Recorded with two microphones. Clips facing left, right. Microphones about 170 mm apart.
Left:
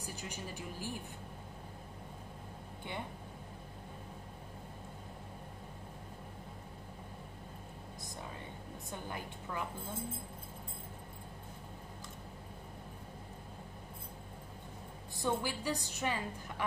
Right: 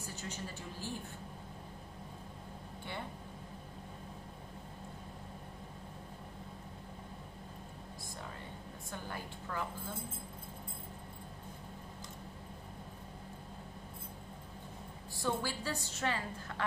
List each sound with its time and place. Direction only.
0.0 s a woman's voice: 15° left (ahead or behind)
9.1 s a woman's voice: 15° left (ahead or behind)
15.1 s a woman's voice: 15° left (ahead or behind)